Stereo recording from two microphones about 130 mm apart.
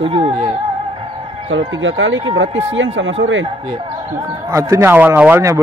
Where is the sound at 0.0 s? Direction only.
40° right (ahead or behind).